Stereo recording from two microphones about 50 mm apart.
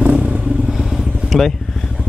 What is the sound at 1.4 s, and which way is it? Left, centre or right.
Vehicle, centre.